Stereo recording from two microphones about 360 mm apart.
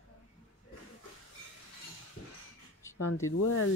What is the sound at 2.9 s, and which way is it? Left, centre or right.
Speech, left.